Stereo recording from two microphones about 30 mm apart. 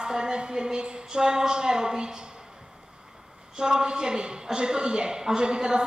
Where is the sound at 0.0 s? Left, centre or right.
Right.